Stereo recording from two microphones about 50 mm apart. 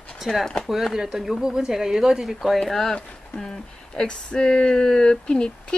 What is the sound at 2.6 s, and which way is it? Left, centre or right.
Speech, centre.